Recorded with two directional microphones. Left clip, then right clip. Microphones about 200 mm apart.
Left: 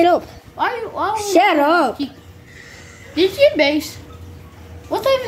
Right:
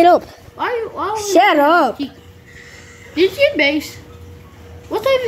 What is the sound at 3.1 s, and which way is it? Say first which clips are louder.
Speech: even; 15° left (ahead or behind).